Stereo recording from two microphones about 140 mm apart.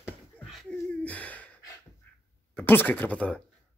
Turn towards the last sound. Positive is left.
turn(degrees=10)  # may be behind; listen again after turning